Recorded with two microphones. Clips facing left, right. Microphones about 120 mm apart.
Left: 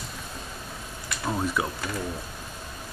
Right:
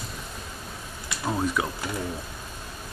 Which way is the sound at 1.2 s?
Centre (ahead or behind).